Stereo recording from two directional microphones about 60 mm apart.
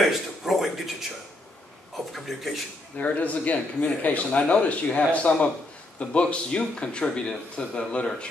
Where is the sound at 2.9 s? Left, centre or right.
Left.